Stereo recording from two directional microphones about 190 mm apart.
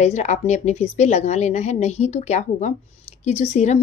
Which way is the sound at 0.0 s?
35° left (ahead or behind).